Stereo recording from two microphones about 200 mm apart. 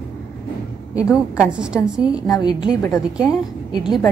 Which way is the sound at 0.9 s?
5° right (ahead or behind).